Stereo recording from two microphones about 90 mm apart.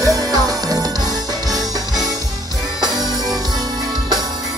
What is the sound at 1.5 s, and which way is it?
Music, centre (ahead or behind).